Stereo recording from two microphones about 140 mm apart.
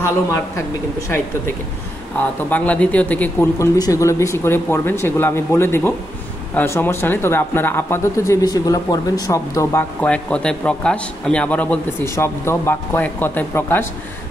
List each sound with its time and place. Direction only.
0.0 s a man's voice: 20° left (ahead or behind)
3.5 s a man's voice: 25° left (ahead or behind)
10.0 s a man's voice: 5° left (ahead or behind)